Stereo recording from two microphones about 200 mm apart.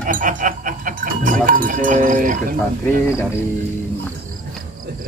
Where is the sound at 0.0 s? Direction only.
40° right (ahead or behind).